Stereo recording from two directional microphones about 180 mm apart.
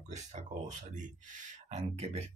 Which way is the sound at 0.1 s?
40° right (ahead or behind).